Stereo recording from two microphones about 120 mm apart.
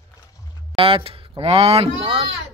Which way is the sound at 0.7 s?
50° right (ahead or behind).